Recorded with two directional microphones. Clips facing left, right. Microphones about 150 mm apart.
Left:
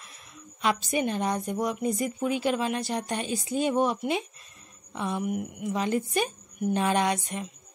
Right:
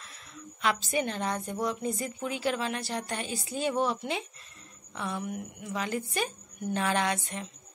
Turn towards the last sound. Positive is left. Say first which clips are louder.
# left 3 dB
turn(degrees=15)  # may be behind; listen again after turning